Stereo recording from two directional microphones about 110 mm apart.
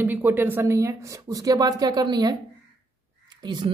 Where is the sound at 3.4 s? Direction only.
40° right (ahead or behind).